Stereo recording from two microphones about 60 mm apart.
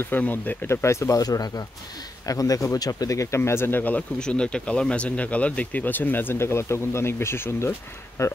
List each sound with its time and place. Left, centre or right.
0.2 s speech: left
0.7 s speech: left
1.2 s speech: left
2.2 s speech: left
4.2 s speech: centre; by 7.7 s left
8.2 s speech: left